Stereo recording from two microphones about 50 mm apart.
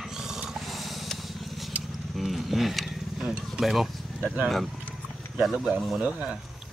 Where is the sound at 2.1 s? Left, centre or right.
Centre.